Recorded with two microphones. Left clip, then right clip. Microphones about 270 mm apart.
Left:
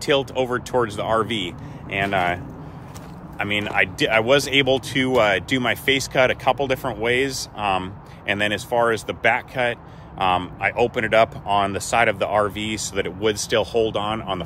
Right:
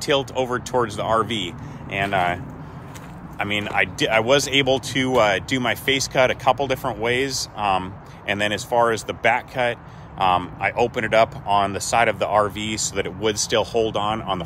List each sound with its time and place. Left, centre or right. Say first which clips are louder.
0.0 s speech: left 1 dB; centre